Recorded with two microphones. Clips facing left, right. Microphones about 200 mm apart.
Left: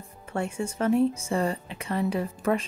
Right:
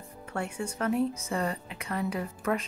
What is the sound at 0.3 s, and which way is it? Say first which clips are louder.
A woman's voice: left 4 dB; 25° left (ahead or behind).